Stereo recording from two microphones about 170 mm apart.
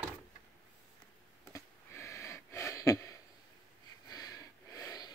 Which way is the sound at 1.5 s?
15° left (ahead or behind).